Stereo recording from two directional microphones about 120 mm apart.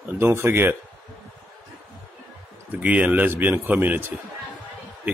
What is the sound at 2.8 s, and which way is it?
Speech, 10° right (ahead or behind).